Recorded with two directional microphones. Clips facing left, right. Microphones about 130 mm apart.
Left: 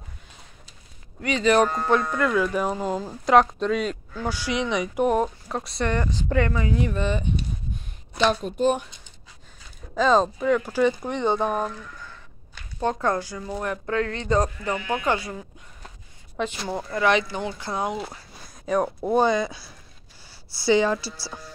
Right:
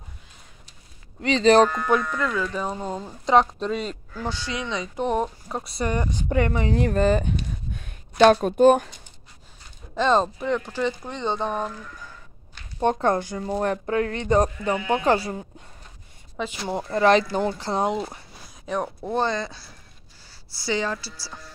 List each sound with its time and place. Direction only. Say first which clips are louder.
1.2 s speech: right 3 dB; 30° right (ahead or behind)
2.1 s speech: left 4 dB; 10° left (ahead or behind)
4.4 s speech: left 4 dB; 15° left (ahead or behind); by 6.0 s 10° right (ahead or behind)
6.2 s speech: right 1 dB; 20° right (ahead or behind)
6.7 s speech: right 5 dB; 45° right (ahead or behind)
7.8 s speech: right 7 dB; 60° right (ahead or behind)
9.9 s speech: left 1 dB; centre (ahead or behind)
12.8 s speech: right 3 dB; 25° right (ahead or behind)
13.4 s speech: right 5 dB; 35° right (ahead or behind); by 15.0 s 20° right (ahead or behind)
15.0 s speech: right 4 dB; 30° right (ahead or behind)
16.6 s speech: right 2 dB; 20° right (ahead or behind)
17.0 s speech: right 4 dB; 35° right (ahead or behind)
18.9 s speech: left 4 dB; 10° left (ahead or behind)
20.6 s speech: left 6 dB; 15° left (ahead or behind)